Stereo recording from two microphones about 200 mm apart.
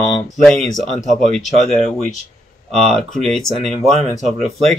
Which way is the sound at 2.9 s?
Centre (ahead or behind).